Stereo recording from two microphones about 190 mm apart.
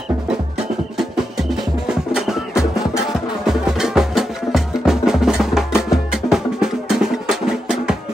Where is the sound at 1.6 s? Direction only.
Centre (ahead or behind).